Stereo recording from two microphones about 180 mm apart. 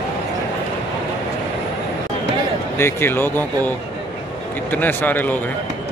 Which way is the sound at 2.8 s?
10° left (ahead or behind).